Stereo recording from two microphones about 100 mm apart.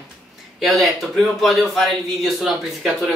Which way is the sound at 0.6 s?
Centre (ahead or behind).